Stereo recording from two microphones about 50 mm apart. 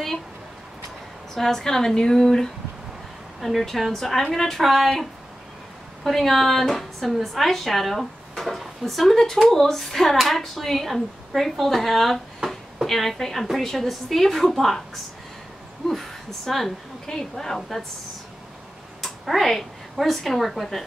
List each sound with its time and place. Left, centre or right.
1.3 s speech: centre
6.0 s speech: centre
15.9 s speech: centre
19.0 s a woman's voice: centre